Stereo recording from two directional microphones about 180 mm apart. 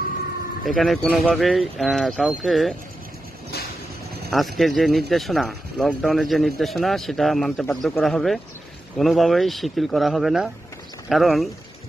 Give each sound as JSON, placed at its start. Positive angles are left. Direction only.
{"t": 0.7, "sound": "speech", "side_deg": 0}
{"t": 3.5, "sound": "vehicle", "side_deg": 65}
{"t": 4.3, "sound": "speech", "side_deg": 0}